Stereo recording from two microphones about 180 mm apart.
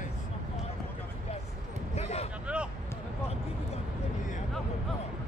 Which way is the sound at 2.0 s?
35° left (ahead or behind).